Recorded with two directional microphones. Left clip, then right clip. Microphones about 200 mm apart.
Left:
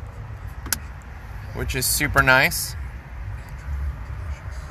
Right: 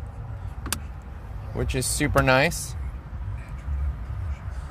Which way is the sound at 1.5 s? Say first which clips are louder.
Left 3 dB; 25° right (ahead or behind).